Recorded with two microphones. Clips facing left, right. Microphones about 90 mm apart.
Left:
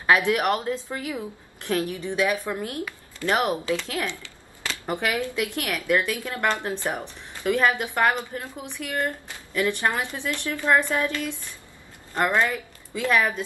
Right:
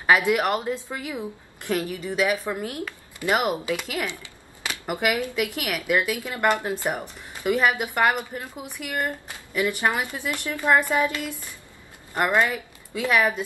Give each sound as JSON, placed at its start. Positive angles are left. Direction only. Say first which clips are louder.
{"t": 0.4, "sound": "a woman's voice", "louder": "even", "side_deg": -20}